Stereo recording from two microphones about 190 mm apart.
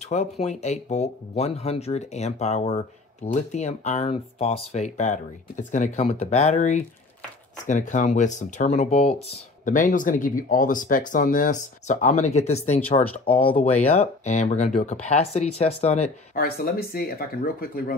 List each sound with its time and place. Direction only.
0.1 s speech: 35° left (ahead or behind)
16.3 s speech: 50° left (ahead or behind)